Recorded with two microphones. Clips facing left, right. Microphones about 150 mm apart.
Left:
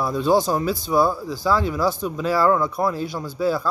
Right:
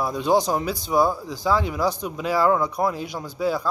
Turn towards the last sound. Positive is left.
turn(degrees=-15)  # may be behind; listen again after turning